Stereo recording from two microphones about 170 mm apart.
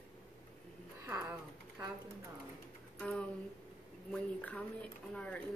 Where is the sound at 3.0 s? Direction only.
5° left (ahead or behind).